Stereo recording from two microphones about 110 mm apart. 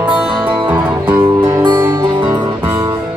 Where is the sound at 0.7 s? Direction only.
20° right (ahead or behind).